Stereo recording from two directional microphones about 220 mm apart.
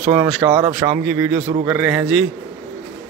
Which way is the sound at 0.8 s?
15° right (ahead or behind).